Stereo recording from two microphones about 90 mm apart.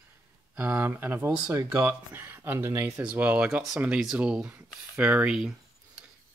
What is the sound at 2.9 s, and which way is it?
Speech, 15° right (ahead or behind).